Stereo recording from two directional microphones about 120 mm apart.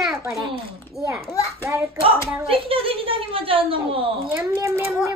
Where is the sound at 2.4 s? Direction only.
50° right (ahead or behind).